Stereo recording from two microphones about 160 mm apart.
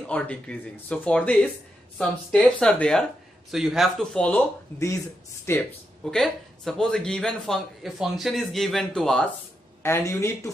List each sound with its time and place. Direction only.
0.0 s speech: 10° left (ahead or behind)
6.0 s speech: centre (ahead or behind)
9.8 s speech: 15° left (ahead or behind)